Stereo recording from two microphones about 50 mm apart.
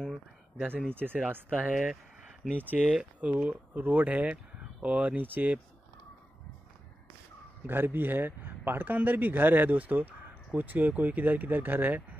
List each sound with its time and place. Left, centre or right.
0.9 s speech: right
1.7 s speech: centre
2.5 s speech: right
7.6 s speech: right